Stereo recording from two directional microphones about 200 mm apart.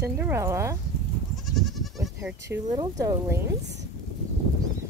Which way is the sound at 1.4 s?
Centre (ahead or behind).